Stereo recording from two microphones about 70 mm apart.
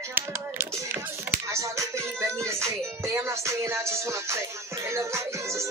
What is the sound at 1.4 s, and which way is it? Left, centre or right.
Music, right.